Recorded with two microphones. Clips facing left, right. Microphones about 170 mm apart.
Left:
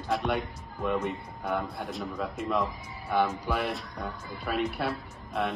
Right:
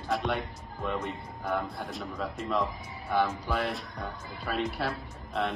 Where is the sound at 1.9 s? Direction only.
Centre (ahead or behind).